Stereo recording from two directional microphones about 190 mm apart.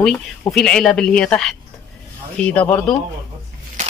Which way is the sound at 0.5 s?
5° left (ahead or behind).